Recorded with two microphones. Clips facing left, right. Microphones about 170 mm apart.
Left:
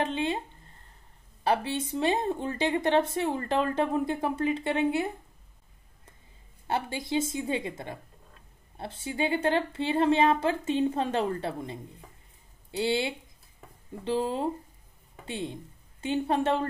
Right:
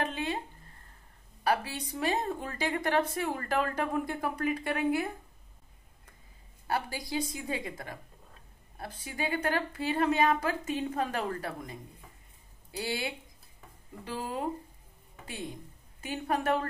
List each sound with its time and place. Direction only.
0.0 s a sound: 25° left (ahead or behind)
1.4 s speech: 25° left (ahead or behind)
6.7 s a woman's voice: 25° left (ahead or behind)